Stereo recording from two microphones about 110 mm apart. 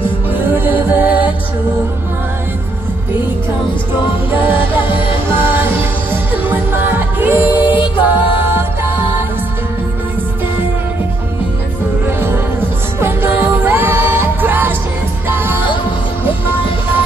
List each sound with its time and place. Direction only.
0.3 s music: 15° right (ahead or behind)
4.3 s music: 15° right (ahead or behind)
7.6 s music: 50° left (ahead or behind)
13.0 s music: 20° right (ahead or behind)